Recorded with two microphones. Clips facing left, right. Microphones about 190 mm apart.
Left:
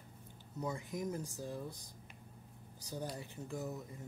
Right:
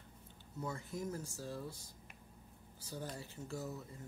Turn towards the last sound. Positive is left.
turn(degrees=15)  # may be behind; listen again after turning